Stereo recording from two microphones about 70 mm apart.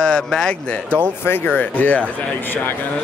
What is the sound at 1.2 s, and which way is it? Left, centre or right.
Speech, left.